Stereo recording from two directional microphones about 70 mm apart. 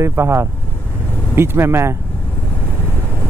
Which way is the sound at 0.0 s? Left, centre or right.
Right.